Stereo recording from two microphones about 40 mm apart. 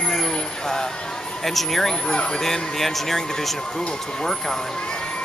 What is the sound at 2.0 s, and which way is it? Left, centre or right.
Speech, left.